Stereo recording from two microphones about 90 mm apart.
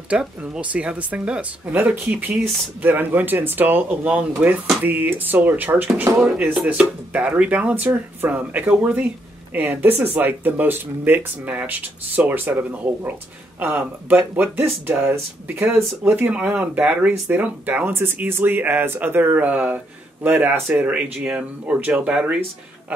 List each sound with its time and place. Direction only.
0.1 s speech: 15° right (ahead or behind)